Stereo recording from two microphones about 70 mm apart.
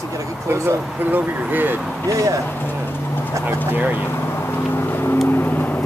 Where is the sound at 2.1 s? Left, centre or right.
Right.